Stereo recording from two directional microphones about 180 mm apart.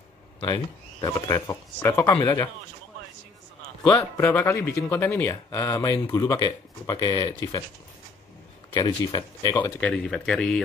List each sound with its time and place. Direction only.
1.0 s speech: 20° left (ahead or behind)
3.8 s speech: 10° left (ahead or behind)
8.7 s speech: 20° left (ahead or behind)
9.6 s speech: 10° left (ahead or behind)